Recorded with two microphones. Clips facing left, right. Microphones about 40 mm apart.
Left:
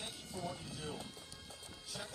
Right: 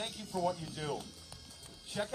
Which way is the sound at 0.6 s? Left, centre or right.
Right.